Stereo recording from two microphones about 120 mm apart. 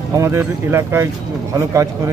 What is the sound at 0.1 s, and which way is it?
Speech, 25° right (ahead or behind).